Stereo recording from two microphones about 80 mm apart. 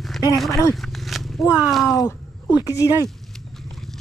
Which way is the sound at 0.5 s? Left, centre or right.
Left.